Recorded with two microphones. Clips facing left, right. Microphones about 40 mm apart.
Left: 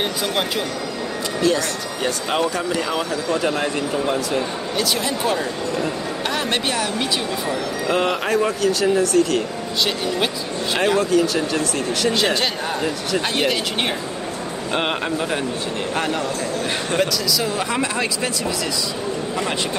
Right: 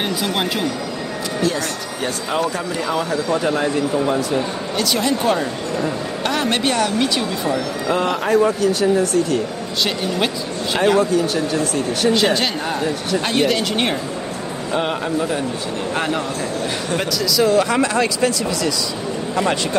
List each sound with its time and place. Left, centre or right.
0.0 s speech: centre
1.5 s speech: right
3.4 s speech: centre
4.7 s speech: centre
9.8 s speech: centre
12.1 s speech: centre
14.7 s a man's voice: left
15.9 s speech: centre